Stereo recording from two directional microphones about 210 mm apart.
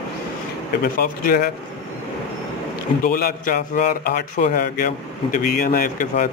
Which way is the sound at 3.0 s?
45° left (ahead or behind).